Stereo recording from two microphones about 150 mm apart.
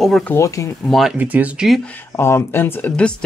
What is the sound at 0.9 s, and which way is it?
Speech, centre (ahead or behind).